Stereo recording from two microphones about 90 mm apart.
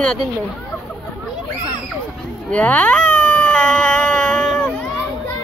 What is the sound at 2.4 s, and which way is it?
Baby cry, 15° left (ahead or behind).